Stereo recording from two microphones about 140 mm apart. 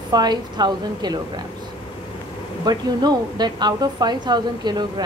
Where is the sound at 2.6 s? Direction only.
30° right (ahead or behind).